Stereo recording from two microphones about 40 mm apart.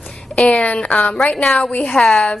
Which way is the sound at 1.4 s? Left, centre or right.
Centre.